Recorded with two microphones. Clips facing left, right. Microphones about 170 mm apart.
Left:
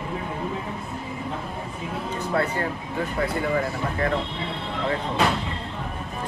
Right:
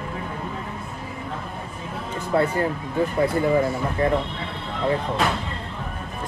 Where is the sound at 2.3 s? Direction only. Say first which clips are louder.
Right 5 dB; 25° right (ahead or behind).